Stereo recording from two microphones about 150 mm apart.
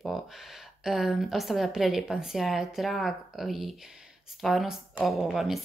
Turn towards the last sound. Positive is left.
turn(degrees=0)  # may be behind; listen again after turning